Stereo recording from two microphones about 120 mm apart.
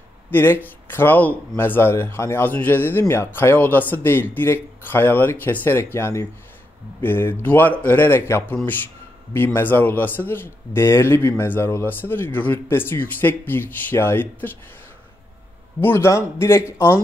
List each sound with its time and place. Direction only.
0.3 s a man's voice: 15° left (ahead or behind)
15.8 s a man's voice: 20° left (ahead or behind)